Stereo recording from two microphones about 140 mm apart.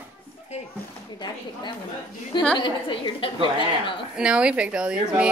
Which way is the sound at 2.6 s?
35° left (ahead or behind).